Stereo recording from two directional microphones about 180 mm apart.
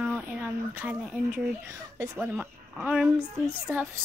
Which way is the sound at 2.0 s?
10° right (ahead or behind).